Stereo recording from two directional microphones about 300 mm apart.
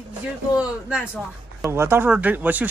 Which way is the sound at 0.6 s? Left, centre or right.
Centre.